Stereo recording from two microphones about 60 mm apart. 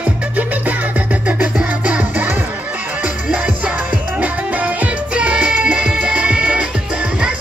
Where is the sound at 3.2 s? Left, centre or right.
Centre.